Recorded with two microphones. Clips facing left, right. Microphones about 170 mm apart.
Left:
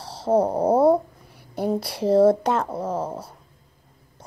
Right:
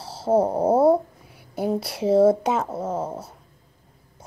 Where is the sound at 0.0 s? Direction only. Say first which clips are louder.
Even; 5° right (ahead or behind).